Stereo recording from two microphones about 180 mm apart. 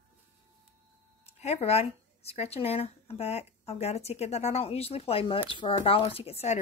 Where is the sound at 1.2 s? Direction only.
35° left (ahead or behind).